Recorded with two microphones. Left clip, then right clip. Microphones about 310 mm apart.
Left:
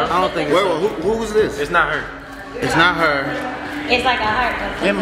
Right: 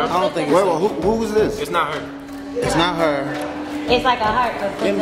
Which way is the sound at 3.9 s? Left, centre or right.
Right.